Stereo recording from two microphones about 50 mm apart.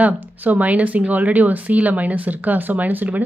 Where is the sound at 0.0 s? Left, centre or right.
Right.